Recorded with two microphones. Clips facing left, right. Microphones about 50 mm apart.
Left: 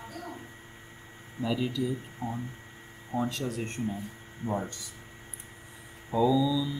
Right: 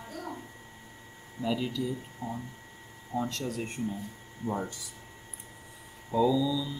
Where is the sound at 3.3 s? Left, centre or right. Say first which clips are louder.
Left 1 dB; centre.